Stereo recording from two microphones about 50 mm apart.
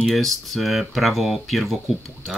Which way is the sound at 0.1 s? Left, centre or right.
Centre.